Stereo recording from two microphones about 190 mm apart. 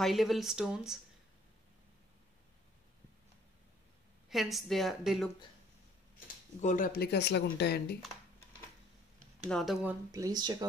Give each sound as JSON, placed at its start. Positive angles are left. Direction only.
{"t": 0.0, "sound": "a woman's voice", "side_deg": 0}
{"t": 4.3, "sound": "a woman's voice", "side_deg": 0}
{"t": 6.1, "sound": "speech", "side_deg": 45}
{"t": 9.5, "sound": "a woman's voice", "side_deg": 0}
{"t": 10.1, "sound": "speech", "side_deg": -20}